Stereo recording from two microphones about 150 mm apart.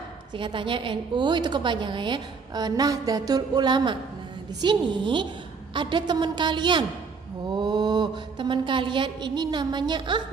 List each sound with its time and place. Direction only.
0.4 s a woman's voice: 35° right (ahead or behind)
7.5 s mantra: 30° right (ahead or behind)